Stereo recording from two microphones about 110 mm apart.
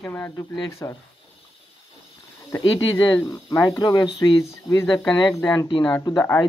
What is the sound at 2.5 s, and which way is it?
Speech, 25° left (ahead or behind).